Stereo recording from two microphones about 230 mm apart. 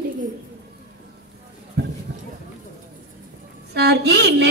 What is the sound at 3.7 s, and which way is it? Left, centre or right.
Speech, right.